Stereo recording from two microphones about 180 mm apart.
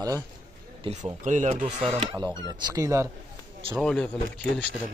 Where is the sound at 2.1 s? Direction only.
20° right (ahead or behind).